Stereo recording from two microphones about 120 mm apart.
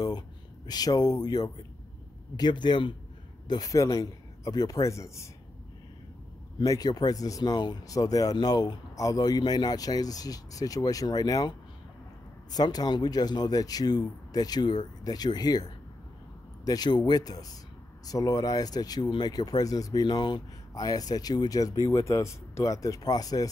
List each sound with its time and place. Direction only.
0.7 s a man's voice: 35° left (ahead or behind)
6.6 s speech: 30° left (ahead or behind)
12.5 s speech: 35° left (ahead or behind)
16.6 s speech: 35° left (ahead or behind)